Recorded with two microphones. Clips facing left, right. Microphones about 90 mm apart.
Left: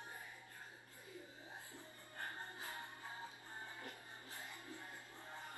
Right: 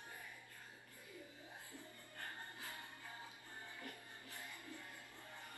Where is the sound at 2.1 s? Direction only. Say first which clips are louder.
Left 3 dB; 20° left (ahead or behind).